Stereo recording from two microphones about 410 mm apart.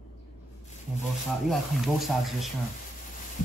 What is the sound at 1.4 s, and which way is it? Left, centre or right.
Speech, centre.